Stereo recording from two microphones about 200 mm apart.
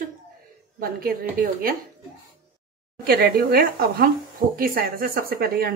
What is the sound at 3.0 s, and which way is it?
Speech, 50° right (ahead or behind).